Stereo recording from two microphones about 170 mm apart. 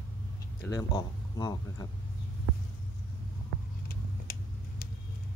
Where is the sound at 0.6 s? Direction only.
20° left (ahead or behind).